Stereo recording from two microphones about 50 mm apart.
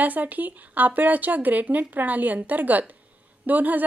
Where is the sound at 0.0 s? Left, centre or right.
Right.